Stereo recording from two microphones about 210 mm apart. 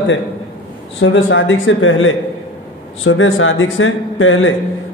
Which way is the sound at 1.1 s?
60° left (ahead or behind).